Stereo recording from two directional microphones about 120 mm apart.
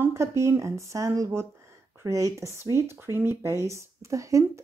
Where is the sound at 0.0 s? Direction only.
25° right (ahead or behind).